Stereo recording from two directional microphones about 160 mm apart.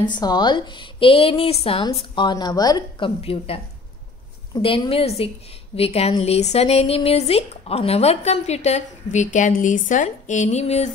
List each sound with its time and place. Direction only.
0.0 s a woman's voice: 25° left (ahead or behind)
3.2 s speech: 35° left (ahead or behind)